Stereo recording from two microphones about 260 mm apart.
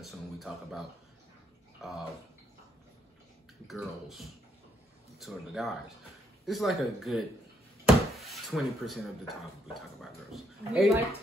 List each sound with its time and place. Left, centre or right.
0.0 s speech: centre
3.6 s speech: centre